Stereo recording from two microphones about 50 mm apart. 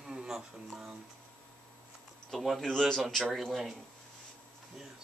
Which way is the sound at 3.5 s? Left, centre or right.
Centre.